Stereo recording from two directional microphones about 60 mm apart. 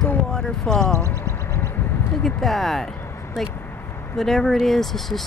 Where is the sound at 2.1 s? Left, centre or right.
Centre.